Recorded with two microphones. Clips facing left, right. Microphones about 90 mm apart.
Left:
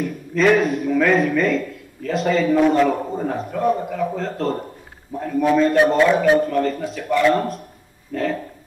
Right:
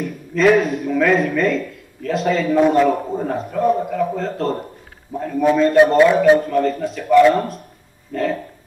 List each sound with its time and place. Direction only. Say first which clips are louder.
0.0 s a man's voice: right 2 dB; centre (ahead or behind)